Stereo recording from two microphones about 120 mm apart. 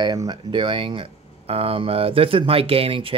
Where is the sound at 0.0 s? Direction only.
35° right (ahead or behind).